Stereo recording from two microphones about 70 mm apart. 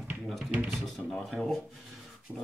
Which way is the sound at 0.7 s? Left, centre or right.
Centre.